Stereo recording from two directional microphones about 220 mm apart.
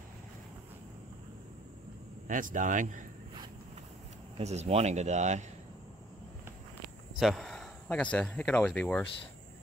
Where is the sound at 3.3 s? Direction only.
20° right (ahead or behind).